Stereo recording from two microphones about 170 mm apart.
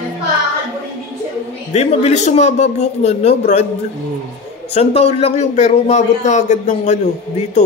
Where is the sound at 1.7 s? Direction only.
40° left (ahead or behind).